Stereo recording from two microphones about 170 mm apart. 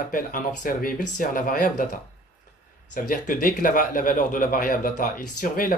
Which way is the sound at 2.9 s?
50° left (ahead or behind).